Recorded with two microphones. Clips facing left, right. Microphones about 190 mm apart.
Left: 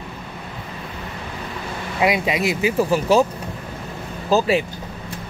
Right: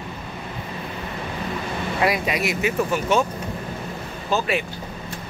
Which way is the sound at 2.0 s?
20° left (ahead or behind).